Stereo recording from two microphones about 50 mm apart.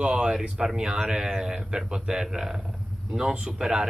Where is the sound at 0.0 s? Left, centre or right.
Centre.